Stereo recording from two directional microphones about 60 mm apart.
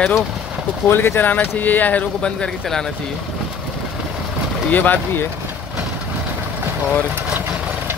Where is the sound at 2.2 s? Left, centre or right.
Centre.